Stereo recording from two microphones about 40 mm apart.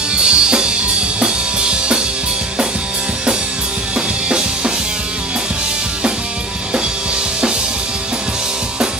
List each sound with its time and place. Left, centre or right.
0.1 s music: right
1.2 s drum kit: right
4.3 s drum: right